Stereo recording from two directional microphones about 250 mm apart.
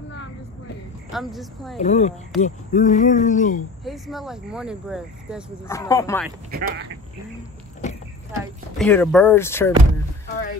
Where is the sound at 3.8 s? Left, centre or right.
Centre.